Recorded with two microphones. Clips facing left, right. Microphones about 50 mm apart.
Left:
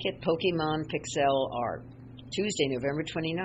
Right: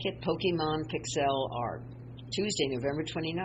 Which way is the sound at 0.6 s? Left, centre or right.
Left.